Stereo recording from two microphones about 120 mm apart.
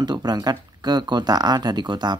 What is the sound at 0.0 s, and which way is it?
Speech, 35° right (ahead or behind).